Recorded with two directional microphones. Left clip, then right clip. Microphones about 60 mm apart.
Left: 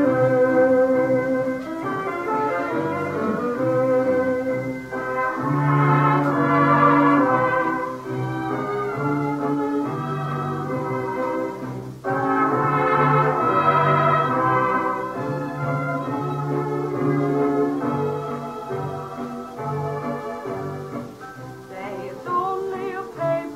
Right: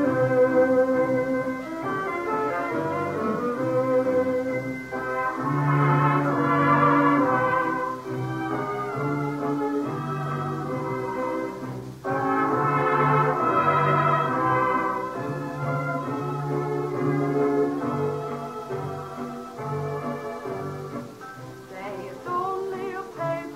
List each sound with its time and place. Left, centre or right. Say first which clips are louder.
0.0 s organ: left 3 dB; centre
1.9 s music: left 2 dB; centre